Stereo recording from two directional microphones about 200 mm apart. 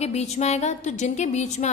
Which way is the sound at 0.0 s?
35° left (ahead or behind).